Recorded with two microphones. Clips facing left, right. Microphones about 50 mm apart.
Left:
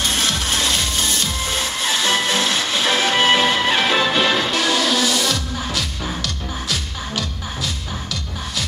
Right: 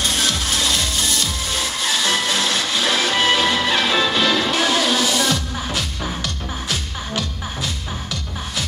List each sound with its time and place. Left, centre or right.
0.0 s music: left
4.6 s music: centre